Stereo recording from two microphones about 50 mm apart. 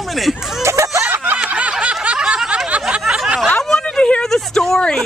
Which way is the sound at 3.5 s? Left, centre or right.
Centre.